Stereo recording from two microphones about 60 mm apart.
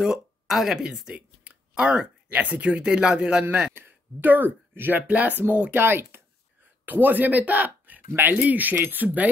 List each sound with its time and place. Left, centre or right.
0.0 s speech: centre
2.3 s speech: right
3.7 s speech: right